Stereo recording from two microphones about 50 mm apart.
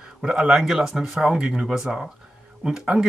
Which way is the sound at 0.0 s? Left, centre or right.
Right.